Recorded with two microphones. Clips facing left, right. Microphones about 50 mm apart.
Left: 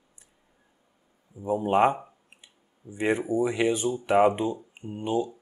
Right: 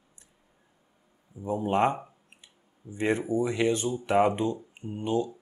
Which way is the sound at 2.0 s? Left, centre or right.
Centre.